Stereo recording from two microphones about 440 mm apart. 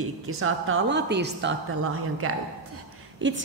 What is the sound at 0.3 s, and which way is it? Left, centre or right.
A woman's voice, right.